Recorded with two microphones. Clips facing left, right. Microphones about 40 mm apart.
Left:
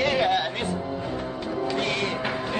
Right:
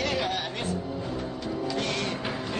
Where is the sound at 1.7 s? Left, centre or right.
Left.